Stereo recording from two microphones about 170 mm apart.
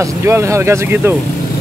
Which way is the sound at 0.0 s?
15° right (ahead or behind).